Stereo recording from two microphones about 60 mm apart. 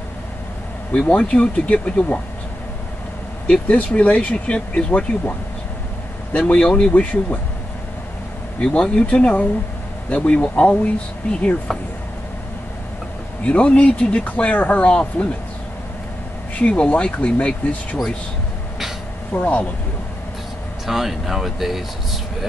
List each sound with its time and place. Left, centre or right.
0.9 s speech: centre
3.6 s speech: left
6.3 s speech: centre
8.6 s speech: centre
13.5 s speech: centre
16.5 s speech: left
19.3 s speech: left
20.8 s speech: centre